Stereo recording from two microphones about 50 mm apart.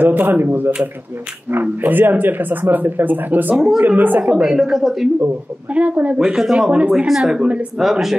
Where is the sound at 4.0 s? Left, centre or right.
Right.